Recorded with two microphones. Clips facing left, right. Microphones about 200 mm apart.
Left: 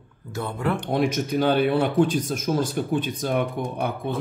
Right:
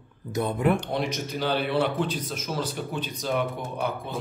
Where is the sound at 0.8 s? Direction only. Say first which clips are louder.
Left 5 dB; 55° left (ahead or behind).